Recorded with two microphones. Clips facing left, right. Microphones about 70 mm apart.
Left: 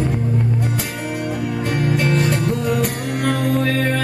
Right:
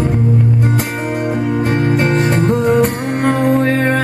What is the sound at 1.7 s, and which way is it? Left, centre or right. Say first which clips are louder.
Music: right 2 dB; right.